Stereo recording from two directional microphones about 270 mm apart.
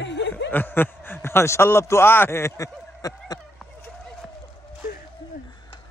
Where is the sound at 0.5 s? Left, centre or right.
Centre.